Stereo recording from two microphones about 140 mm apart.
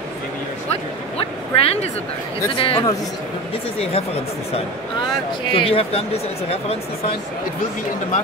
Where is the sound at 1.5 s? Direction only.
45° left (ahead or behind).